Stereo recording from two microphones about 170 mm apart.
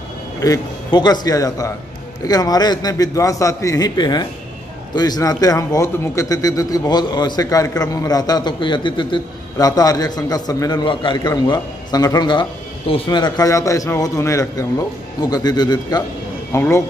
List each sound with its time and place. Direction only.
0.4 s a man's voice: 20° left (ahead or behind)